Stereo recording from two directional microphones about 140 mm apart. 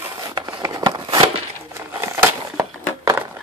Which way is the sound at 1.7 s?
20° right (ahead or behind).